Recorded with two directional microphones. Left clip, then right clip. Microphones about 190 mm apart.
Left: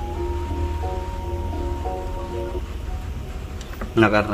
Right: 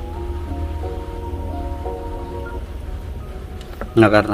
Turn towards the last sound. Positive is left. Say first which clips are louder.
# right 4 dB
turn(degrees=-30)  # may be behind; listen again after turning